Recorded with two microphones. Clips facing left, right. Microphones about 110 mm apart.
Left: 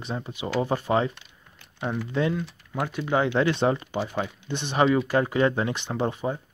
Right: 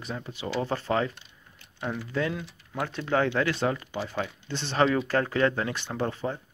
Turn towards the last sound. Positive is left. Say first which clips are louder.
# left 3 dB
turn(degrees=15)  # may be behind; listen again after turning